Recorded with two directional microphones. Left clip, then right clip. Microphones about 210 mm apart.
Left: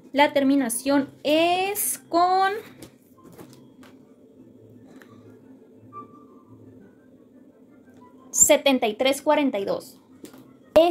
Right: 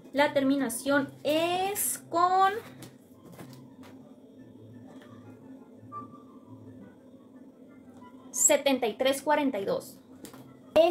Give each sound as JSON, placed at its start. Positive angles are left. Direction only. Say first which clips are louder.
{"t": 0.1, "sound": "a woman's voice", "louder": "left 6 dB", "side_deg": 45}
{"t": 8.3, "sound": "a woman's voice", "louder": "left 6 dB", "side_deg": 40}